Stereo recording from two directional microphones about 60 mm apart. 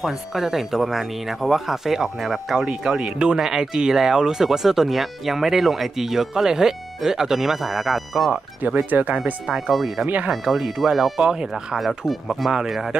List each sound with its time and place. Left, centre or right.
0.0 s speech: centre
8.6 s speech: right
9.2 s speech: centre